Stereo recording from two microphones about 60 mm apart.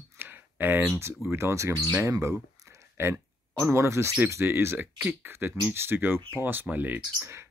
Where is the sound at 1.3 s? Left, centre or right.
Right.